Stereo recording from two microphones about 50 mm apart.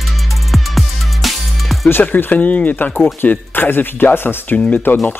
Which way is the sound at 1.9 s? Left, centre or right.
Left.